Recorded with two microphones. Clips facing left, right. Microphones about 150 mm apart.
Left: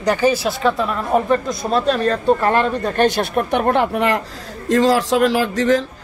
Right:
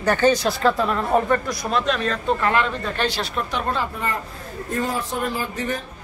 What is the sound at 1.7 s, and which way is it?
Speech, 35° left (ahead or behind).